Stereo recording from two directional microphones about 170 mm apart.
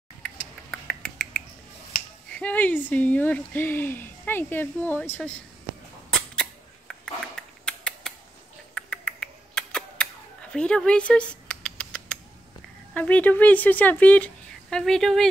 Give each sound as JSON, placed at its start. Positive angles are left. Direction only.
{"t": 0.7, "sound": "finger snapping", "side_deg": 5}
{"t": 1.9, "sound": "finger snapping", "side_deg": 50}
{"t": 2.3, "sound": "speech", "side_deg": 10}
{"t": 6.0, "sound": "a sound", "side_deg": 5}
{"t": 10.5, "sound": "rodents", "side_deg": 5}
{"t": 12.9, "sound": "speech", "side_deg": 10}